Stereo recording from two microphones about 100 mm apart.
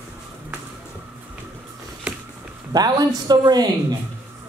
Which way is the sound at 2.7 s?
40° right (ahead or behind).